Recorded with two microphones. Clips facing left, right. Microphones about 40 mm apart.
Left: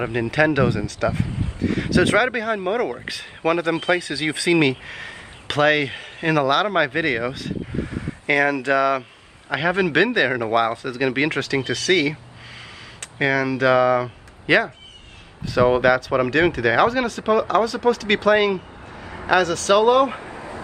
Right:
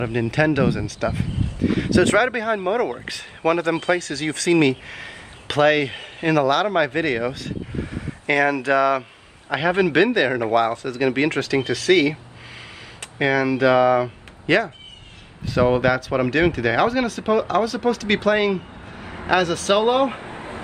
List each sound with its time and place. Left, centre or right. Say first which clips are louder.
0.0 s speech: left 1 dB; centre
4.1 s speech: even; centre
4.6 s speech: right 1 dB; centre
11.5 s speech: right 3 dB; centre
13.0 s a sound: right 1 dB; centre
13.6 s speech: right 1 dB; centre
14.4 s speech: left 1 dB; centre
19.3 s speech: left 1 dB; centre
19.7 s speech: left 3 dB; right
20.2 s a sound: even; right